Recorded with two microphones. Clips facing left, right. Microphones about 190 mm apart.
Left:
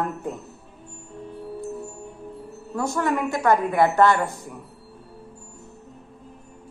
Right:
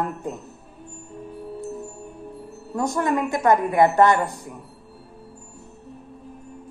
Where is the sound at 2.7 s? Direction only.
15° right (ahead or behind).